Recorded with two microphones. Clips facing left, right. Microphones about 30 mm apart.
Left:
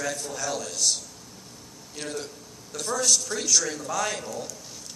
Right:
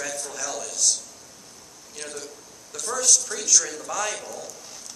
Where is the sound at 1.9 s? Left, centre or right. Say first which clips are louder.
Left 3 dB; centre.